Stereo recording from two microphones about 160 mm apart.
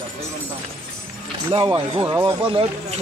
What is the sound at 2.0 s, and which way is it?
Speech, 20° right (ahead or behind).